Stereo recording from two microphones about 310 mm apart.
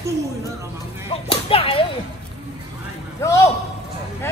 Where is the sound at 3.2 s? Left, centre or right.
Centre.